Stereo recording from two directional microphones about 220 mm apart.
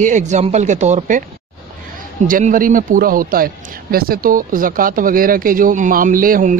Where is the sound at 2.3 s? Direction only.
35° right (ahead or behind).